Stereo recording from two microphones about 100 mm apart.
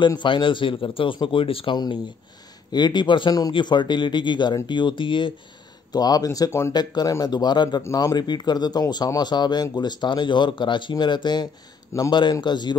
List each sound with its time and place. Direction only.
0.0 s speech: 50° left (ahead or behind)
2.7 s speech: 45° left (ahead or behind)
5.9 s speech: 40° left (ahead or behind)
6.7 s speech: 45° left (ahead or behind)
7.8 s speech: 35° left (ahead or behind)